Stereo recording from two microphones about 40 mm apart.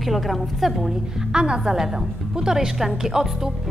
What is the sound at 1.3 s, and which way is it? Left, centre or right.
A woman's voice, right.